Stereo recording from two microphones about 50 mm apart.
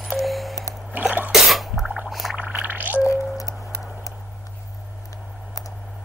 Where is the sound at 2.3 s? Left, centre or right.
Right.